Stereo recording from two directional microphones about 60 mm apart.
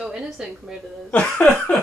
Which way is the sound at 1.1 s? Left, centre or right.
Left.